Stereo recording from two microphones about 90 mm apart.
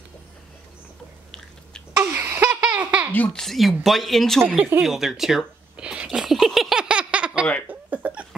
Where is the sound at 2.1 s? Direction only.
25° right (ahead or behind).